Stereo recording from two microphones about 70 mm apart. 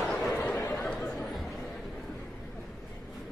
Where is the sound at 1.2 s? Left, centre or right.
Centre.